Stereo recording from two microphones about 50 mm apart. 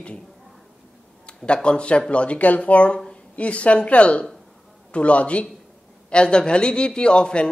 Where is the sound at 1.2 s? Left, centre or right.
Left.